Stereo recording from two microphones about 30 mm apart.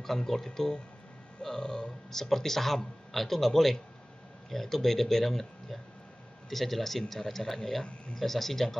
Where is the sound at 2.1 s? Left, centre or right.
Centre.